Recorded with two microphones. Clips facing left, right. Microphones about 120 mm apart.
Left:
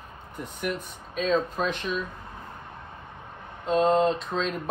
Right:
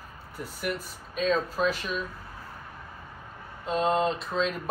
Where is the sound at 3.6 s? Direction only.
Centre (ahead or behind).